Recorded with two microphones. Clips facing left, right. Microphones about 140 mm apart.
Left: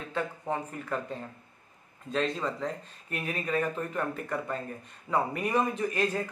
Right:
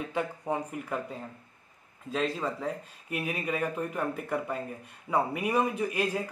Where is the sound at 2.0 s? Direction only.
5° right (ahead or behind).